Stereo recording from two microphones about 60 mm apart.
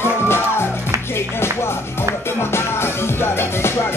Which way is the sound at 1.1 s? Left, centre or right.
Left.